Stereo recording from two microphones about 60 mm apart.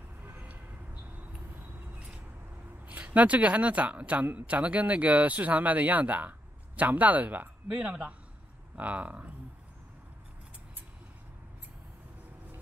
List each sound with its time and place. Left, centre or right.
0.2 s vehicle: right
2.9 s speech: right